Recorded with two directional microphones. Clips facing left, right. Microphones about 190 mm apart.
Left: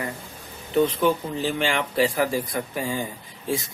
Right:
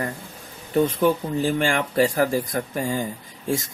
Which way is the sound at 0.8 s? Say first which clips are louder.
Right 2 dB; 45° right (ahead or behind).